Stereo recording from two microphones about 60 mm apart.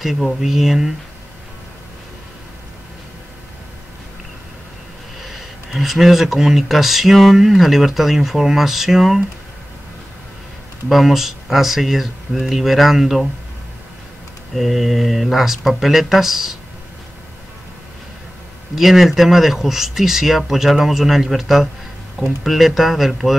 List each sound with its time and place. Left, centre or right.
0.0 s speech: centre
5.2 s speech: centre
10.9 s speech: centre
14.5 s speech: centre
18.8 s speech: centre